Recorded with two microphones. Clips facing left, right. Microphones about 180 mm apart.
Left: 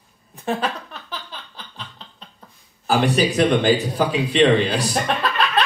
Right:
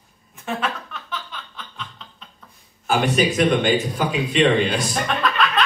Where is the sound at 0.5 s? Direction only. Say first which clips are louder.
Left 2 dB; 35° left (ahead or behind).